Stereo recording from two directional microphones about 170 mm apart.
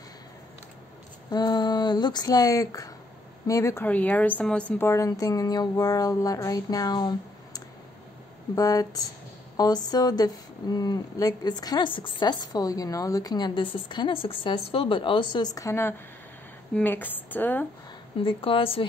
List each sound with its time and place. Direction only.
1.3 s a woman's voice: 25° left (ahead or behind)
18.2 s a woman's voice: 30° left (ahead or behind)